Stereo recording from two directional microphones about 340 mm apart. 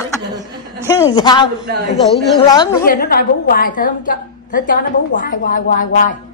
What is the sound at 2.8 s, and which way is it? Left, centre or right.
A woman's voice, left.